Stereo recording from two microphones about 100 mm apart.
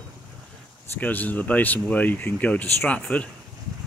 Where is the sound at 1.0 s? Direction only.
15° left (ahead or behind).